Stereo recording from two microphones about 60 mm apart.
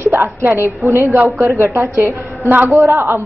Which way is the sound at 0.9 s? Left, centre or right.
Right.